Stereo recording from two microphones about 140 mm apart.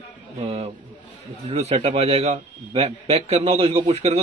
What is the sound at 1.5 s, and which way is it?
A man's voice, 50° right (ahead or behind).